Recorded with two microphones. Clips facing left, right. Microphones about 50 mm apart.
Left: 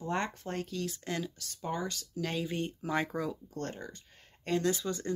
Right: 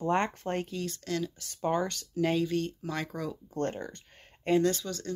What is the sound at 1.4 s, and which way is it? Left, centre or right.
Speech, right.